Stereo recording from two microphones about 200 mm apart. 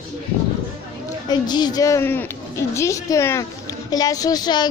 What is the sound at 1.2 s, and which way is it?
A woman's voice, 20° left (ahead or behind).